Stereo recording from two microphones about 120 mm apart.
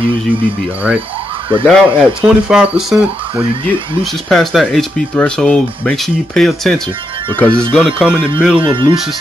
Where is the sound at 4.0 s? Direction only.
5° left (ahead or behind).